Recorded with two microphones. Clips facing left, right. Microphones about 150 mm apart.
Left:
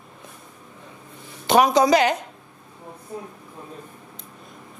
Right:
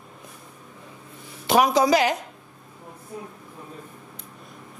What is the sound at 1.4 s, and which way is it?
Speech, centre (ahead or behind).